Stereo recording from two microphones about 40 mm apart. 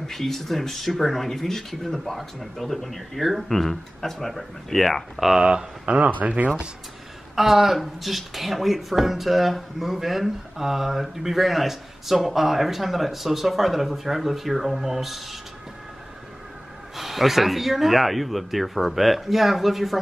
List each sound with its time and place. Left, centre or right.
0.0 s speech: centre
5.4 s speech: right
6.2 s speech: right
7.3 s speech: centre
16.9 s speech: centre